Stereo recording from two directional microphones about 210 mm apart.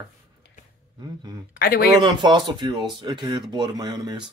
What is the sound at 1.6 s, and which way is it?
Speech, 45° left (ahead or behind).